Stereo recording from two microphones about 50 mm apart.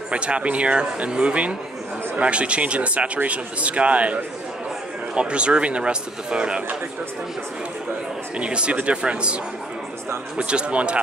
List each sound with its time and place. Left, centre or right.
0.1 s speech: right
8.4 s speech: right